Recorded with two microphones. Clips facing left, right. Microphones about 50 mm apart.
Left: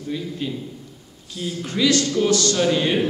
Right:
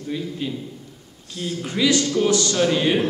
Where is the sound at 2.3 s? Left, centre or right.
Centre.